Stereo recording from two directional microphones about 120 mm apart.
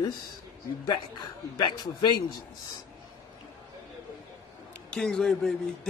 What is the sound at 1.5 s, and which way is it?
Speech, 40° left (ahead or behind).